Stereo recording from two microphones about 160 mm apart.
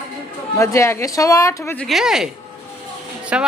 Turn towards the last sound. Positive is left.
turn(degrees=-5)  # may be behind; listen again after turning